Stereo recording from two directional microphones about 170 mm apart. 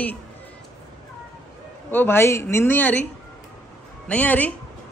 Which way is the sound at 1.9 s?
10° left (ahead or behind).